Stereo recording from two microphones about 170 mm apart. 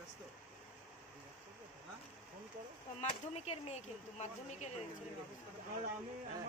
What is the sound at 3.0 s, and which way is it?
Speech, 40° left (ahead or behind).